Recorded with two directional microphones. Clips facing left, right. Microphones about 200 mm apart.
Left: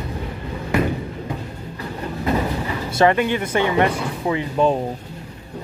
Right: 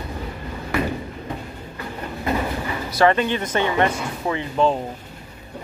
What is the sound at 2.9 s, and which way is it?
Speech, 15° left (ahead or behind).